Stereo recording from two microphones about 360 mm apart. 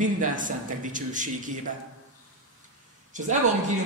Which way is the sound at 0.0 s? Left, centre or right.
Right.